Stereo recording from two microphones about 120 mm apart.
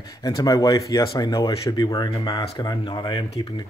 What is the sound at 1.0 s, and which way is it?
Speech, 40° left (ahead or behind).